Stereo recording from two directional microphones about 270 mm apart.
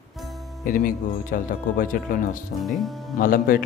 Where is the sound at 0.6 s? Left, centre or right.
Left.